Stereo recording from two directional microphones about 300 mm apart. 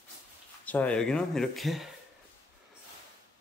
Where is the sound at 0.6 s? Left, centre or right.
Centre.